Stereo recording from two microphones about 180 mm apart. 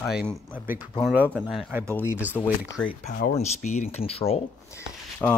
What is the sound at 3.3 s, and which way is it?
Speech, 40° left (ahead or behind).